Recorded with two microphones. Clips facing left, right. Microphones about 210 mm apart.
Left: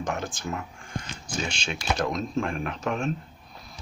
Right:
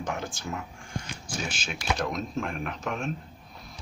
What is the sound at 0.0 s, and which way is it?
Speech, 10° right (ahead or behind).